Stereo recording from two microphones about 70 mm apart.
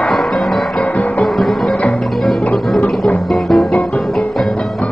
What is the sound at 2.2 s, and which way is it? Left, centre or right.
Music, centre.